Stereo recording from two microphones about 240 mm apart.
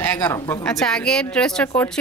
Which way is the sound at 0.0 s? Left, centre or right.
Centre.